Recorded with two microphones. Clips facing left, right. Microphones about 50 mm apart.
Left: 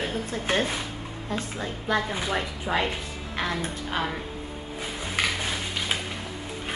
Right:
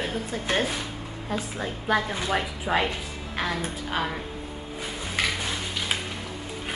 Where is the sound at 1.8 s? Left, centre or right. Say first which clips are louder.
Right 1 dB; centre.